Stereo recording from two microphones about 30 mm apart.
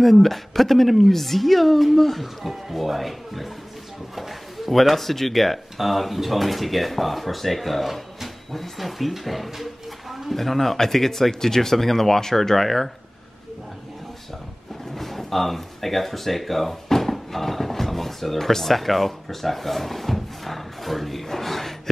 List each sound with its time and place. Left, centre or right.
0.0 s speech: centre
10.3 s speech: centre
15.0 s speech: centre